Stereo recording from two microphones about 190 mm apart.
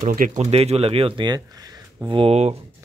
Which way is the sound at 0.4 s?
35° right (ahead or behind).